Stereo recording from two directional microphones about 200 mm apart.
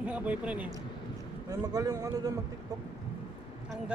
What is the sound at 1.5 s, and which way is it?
Speech, 15° right (ahead or behind).